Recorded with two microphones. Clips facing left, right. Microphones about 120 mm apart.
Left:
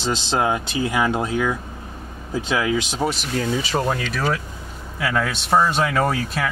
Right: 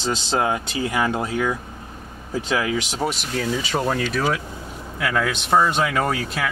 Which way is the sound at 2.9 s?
Centre (ahead or behind).